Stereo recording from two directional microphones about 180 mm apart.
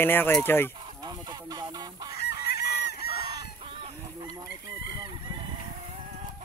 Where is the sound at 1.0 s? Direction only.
25° right (ahead or behind).